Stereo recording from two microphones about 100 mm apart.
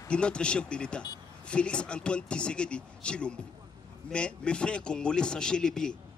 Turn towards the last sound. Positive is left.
turn(degrees=10)  # may be behind; listen again after turning